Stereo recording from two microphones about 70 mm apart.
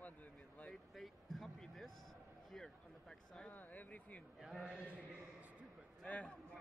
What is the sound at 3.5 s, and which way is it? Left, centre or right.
Speech, left.